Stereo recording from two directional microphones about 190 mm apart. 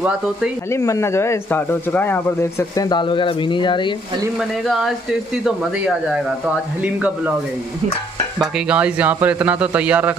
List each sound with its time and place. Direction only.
0.7 s speech: 15° left (ahead or behind)
2.7 s speech: 20° left (ahead or behind)
4.4 s speech: centre (ahead or behind)
8.4 s a man's voice: 5° right (ahead or behind)